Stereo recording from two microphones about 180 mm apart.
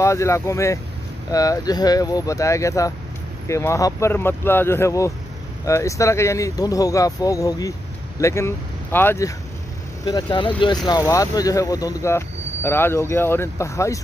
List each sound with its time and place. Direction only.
0.0 s speech: 15° left (ahead or behind)
10.0 s speech: 25° left (ahead or behind)